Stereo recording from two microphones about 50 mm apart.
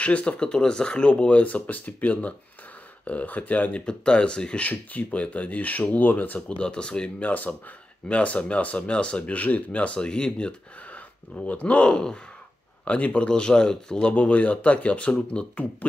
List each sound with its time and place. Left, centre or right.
0.0 s speech: left
3.8 s speech: centre
4.6 s speech: left
6.6 s speech: centre
11.4 s speech: left